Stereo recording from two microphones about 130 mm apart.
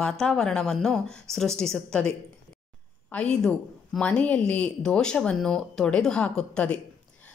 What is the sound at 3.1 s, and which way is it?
A woman's voice, 5° left (ahead or behind).